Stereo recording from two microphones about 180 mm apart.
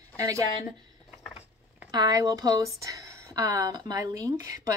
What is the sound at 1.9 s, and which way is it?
Speech, 20° right (ahead or behind).